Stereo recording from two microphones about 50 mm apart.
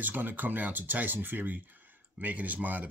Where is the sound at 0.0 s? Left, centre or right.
Right.